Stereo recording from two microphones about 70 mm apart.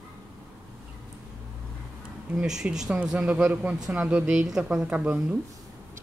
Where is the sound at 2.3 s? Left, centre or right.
Centre.